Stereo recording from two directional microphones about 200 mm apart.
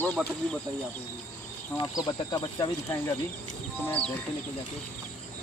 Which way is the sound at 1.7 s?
20° left (ahead or behind).